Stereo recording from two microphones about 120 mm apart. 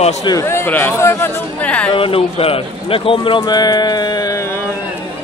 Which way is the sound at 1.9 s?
50° left (ahead or behind).